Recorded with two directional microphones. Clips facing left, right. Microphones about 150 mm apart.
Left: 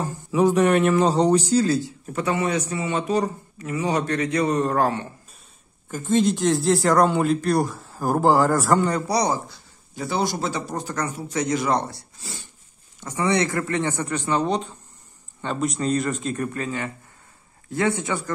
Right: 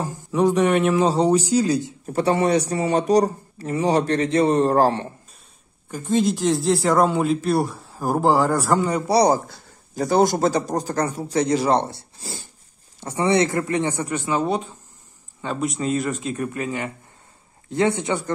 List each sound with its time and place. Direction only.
0.3 s speech: centre (ahead or behind); by 2.0 s 20° right (ahead or behind)
2.0 s speech: 35° right (ahead or behind)
5.9 s speech: centre (ahead or behind)
9.0 s speech: 30° right (ahead or behind)
9.3 s speech: 45° right (ahead or behind); by 16.4 s centre (ahead or behind)
16.5 s speech: 15° right (ahead or behind)